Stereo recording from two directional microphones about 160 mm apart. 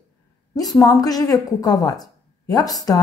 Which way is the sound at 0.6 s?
25° left (ahead or behind).